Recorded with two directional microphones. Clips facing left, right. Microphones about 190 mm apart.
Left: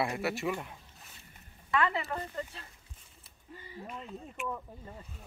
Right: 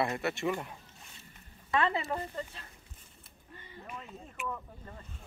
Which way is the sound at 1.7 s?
25° right (ahead or behind).